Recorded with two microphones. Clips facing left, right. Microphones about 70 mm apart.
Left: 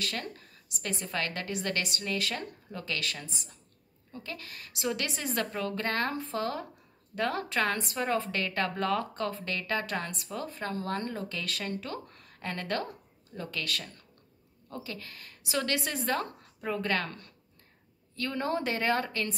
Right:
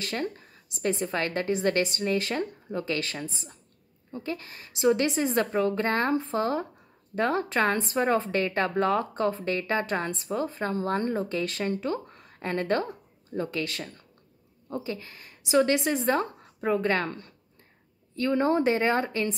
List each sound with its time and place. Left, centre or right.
0.0 s speech: right